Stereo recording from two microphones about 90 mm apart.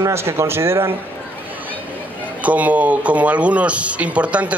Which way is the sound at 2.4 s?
15° right (ahead or behind).